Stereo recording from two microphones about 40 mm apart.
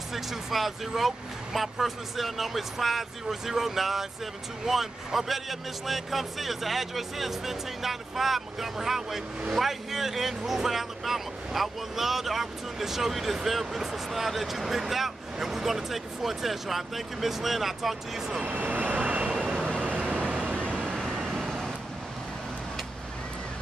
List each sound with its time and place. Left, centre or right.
0.1 s speech: centre
18.4 s vehicle: right
19.3 s vehicle: centre
20.1 s vehicle: right
20.9 s vehicle: centre
21.3 s vehicle: centre